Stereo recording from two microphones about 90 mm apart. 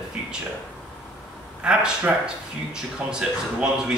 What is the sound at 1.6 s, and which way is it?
Speech, 10° right (ahead or behind).